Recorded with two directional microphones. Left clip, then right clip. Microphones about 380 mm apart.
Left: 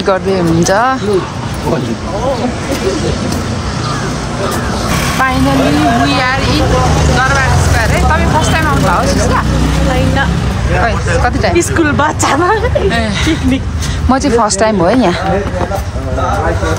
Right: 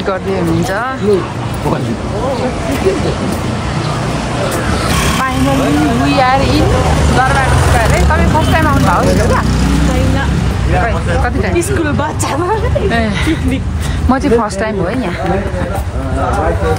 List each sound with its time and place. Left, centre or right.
0.7 s speech: centre
6.0 s speech: centre
8.1 s speech: centre
11.5 s speech: left
12.9 s speech: centre